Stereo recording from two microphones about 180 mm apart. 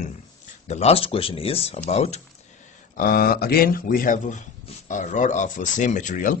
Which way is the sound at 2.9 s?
55° left (ahead or behind).